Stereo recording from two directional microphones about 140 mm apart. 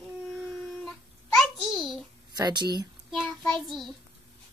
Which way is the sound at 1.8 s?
30° right (ahead or behind).